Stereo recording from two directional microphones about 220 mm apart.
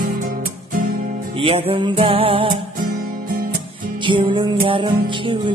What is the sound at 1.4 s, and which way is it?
Music, 25° right (ahead or behind).